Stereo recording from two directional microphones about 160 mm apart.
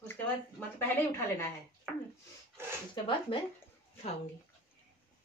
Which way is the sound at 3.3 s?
35° left (ahead or behind).